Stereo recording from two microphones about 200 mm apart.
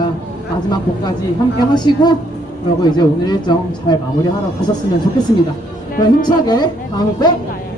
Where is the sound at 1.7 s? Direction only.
20° left (ahead or behind).